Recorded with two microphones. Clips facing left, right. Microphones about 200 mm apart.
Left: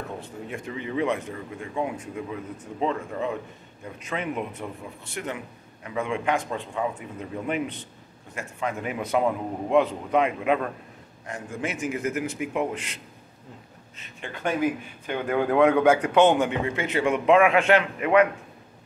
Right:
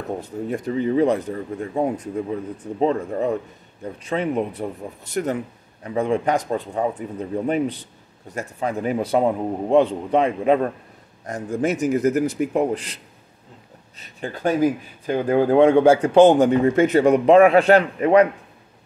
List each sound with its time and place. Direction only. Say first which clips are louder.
0.5 s speech: right 11 dB; 35° right (ahead or behind)